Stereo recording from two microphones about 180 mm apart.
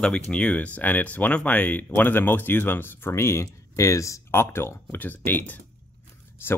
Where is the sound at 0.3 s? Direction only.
5° left (ahead or behind).